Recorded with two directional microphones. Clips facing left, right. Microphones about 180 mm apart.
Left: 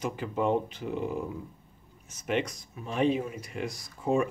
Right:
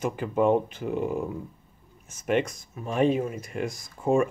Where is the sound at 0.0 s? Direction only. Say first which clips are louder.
Right 5 dB; 50° right (ahead or behind).